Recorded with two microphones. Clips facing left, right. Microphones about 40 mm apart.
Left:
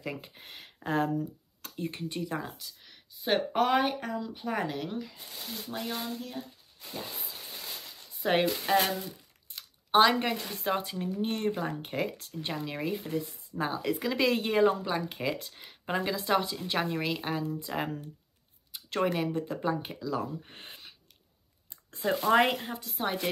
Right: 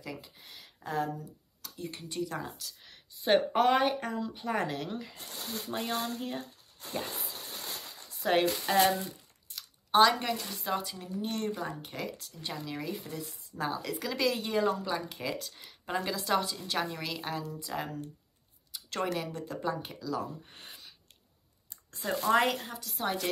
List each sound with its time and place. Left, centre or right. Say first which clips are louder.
0.0 s speech: left 4 dB; left
2.6 s speech: right 1 dB; centre
5.8 s speech: right 2 dB; right
8.2 s speech: even; centre
9.5 s speech: left 2 dB; left
13.5 s speech: left 3 dB; left
14.3 s speech: left 4 dB; left
20.4 s a sound: left 2 dB; left
21.9 s speech: left 3 dB; left